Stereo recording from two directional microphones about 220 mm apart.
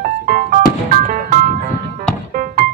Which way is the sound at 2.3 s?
40° right (ahead or behind).